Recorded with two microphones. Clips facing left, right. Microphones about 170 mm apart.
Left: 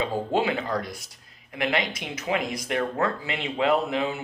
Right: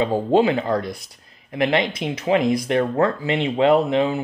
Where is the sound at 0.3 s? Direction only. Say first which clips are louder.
Right 9 dB; 30° right (ahead or behind).